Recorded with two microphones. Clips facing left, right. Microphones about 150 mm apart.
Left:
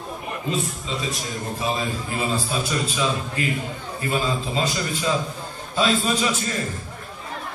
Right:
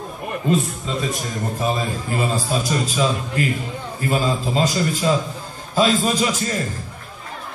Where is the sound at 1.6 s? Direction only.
40° right (ahead or behind).